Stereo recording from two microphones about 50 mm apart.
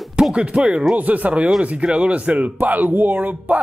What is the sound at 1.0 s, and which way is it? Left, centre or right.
Speech, right.